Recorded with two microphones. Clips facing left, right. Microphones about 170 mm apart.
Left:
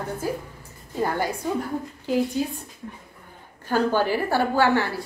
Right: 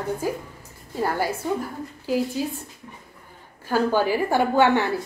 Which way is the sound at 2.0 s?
5° right (ahead or behind).